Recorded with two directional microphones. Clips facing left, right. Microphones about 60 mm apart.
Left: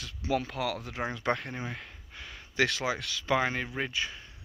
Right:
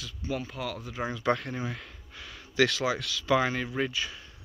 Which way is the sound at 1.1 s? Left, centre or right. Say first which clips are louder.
Right 4 dB; left.